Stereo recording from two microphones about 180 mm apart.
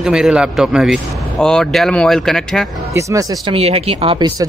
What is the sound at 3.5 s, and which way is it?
Speech, 35° right (ahead or behind).